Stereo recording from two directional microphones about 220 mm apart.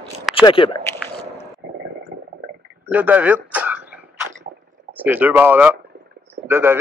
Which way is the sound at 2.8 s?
5° right (ahead or behind).